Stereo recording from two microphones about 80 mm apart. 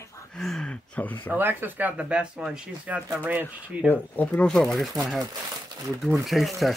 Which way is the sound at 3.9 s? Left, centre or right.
Left.